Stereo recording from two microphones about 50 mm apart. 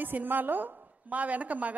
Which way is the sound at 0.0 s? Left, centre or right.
Right.